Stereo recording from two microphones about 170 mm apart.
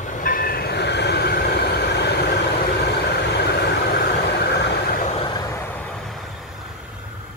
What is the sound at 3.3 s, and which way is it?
Vehicle, 75° left (ahead or behind).